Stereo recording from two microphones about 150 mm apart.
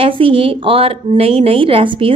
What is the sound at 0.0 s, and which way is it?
A woman's voice, 35° right (ahead or behind).